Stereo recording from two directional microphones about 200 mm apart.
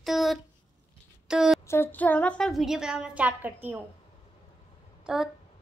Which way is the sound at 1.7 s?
10° left (ahead or behind).